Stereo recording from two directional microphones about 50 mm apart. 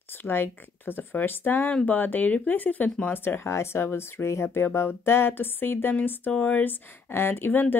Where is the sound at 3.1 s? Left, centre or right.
Left.